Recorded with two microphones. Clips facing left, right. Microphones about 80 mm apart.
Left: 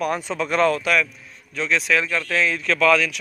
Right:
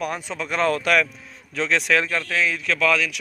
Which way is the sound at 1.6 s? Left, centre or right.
Right.